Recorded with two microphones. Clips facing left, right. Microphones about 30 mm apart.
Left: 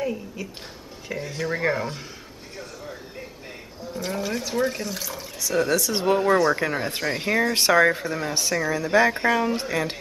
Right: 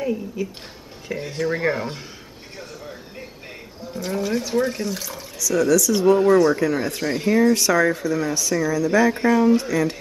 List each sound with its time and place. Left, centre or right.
0.0 s speech: centre
3.9 s speech: centre
5.7 s speech: left
6.1 s speech: centre; by 7.0 s left
7.0 s speech: centre
7.5 s speech: left
9.1 s speech: centre